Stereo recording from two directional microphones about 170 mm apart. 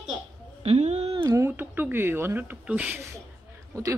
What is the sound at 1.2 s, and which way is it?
A woman's voice, 15° right (ahead or behind).